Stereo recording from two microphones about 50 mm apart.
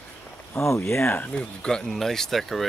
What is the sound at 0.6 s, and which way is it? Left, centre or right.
Speech, left.